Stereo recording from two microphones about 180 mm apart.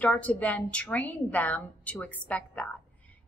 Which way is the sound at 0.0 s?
10° left (ahead or behind).